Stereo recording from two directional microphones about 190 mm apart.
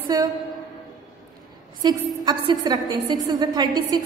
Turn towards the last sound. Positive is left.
turn(degrees=-20)  # may be behind; listen again after turning